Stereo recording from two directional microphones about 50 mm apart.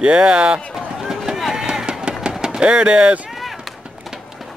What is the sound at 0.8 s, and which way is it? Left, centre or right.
Run, centre.